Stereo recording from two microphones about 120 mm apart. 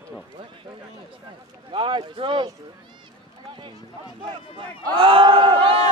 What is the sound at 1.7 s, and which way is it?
Speech, 45° right (ahead or behind).